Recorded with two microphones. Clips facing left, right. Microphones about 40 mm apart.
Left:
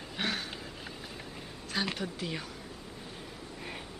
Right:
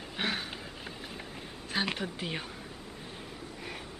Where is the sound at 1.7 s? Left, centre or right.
Right.